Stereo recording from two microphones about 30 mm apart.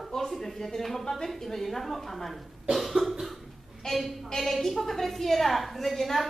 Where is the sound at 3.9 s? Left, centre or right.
Centre.